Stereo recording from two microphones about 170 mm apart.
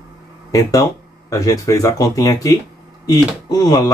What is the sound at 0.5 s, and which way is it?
Speech, 20° left (ahead or behind).